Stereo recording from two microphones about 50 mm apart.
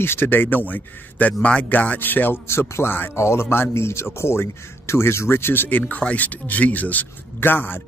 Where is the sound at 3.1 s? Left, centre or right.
Left.